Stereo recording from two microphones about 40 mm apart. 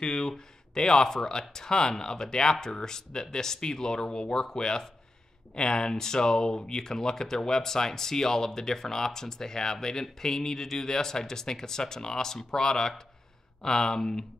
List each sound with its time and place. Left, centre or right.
0.0 s speech: centre